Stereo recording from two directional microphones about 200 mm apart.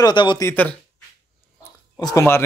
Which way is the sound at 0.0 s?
25° left (ahead or behind).